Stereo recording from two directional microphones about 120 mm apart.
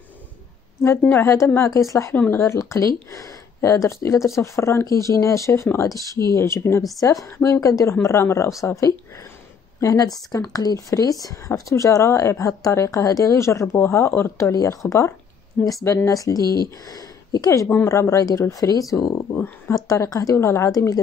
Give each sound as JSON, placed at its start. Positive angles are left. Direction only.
{"t": 0.8, "sound": "speech", "side_deg": 20}